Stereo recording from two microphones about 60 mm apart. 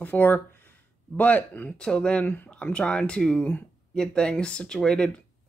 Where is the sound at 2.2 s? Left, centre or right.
Left.